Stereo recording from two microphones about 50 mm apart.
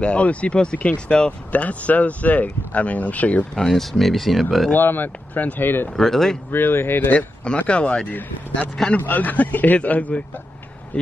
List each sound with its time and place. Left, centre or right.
0.0 s speech: left
3.5 s speech: centre
4.7 s a man's voice: left
5.9 s speech: centre
6.5 s speech: left
7.1 s speech: left
8.1 s a man's voice: left